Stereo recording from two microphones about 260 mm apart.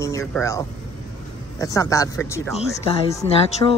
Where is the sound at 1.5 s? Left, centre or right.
Centre.